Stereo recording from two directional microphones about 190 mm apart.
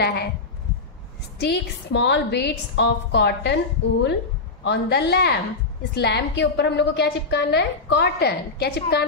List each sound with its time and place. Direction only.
0.0 s a woman's voice: 60° left (ahead or behind)
1.4 s a woman's voice: 65° left (ahead or behind)
4.6 s a woman's voice: 60° left (ahead or behind)